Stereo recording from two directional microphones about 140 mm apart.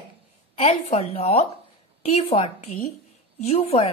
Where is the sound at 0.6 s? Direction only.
45° left (ahead or behind).